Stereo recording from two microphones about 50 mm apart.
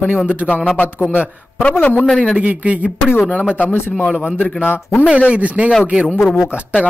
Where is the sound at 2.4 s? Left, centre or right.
Right.